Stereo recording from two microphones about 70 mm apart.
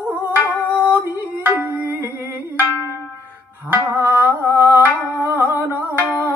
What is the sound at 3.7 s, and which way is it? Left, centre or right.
Music, right.